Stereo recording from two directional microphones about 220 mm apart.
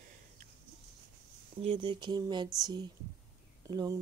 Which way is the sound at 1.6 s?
25° right (ahead or behind).